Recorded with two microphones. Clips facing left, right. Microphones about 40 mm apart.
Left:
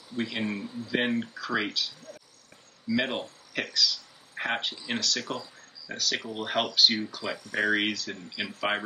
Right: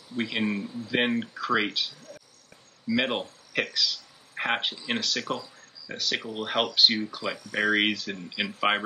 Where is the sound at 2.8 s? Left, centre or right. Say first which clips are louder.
Right 2 dB; right.